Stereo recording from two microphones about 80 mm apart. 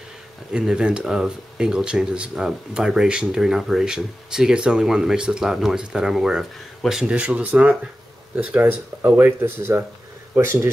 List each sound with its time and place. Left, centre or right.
0.5 s speech: centre
8.5 s speech: right